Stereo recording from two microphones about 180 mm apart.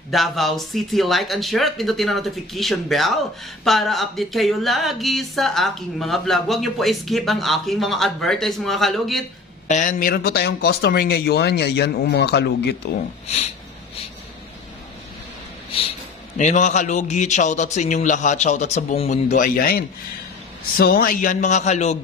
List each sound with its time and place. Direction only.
0.1 s speech: centre (ahead or behind)
9.7 s speech: 45° left (ahead or behind); by 12.9 s 65° left (ahead or behind)
16.3 s a man's voice: 40° left (ahead or behind)